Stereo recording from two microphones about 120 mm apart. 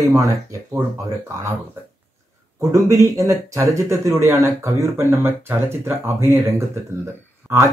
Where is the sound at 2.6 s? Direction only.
25° right (ahead or behind).